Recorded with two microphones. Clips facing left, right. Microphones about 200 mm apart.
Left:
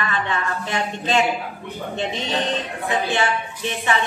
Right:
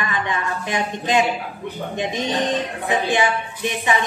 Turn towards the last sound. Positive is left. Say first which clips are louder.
# right 1 dB
turn(degrees=-15)  # may be behind; listen again after turning